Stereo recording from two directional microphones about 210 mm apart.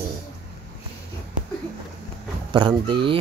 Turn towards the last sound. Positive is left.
turn(degrees=-25)  # may be behind; listen again after turning